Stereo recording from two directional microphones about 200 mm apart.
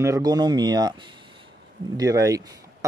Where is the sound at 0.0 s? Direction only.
15° right (ahead or behind).